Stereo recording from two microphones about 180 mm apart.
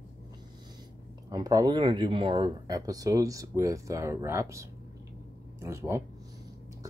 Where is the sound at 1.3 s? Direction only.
20° right (ahead or behind).